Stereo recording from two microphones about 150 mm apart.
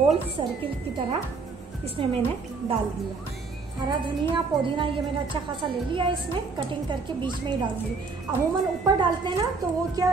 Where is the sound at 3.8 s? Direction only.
30° right (ahead or behind).